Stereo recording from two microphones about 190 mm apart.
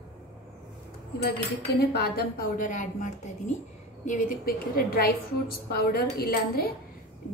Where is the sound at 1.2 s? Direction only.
55° left (ahead or behind).